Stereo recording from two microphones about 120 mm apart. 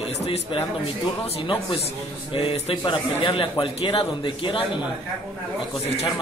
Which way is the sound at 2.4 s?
50° left (ahead or behind).